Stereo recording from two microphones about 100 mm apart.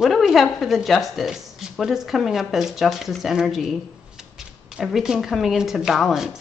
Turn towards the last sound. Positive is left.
turn(degrees=-5)  # may be behind; listen again after turning